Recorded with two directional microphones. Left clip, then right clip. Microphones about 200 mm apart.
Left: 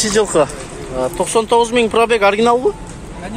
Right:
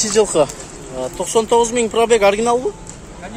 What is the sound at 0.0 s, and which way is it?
Speech, 15° right (ahead or behind).